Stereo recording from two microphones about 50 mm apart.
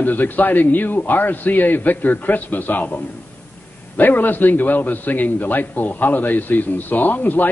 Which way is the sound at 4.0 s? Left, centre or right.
Left.